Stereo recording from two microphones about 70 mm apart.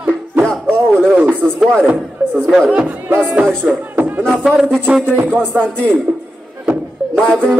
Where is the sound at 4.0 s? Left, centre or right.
Right.